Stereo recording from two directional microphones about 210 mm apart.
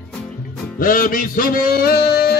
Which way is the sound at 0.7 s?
40° left (ahead or behind).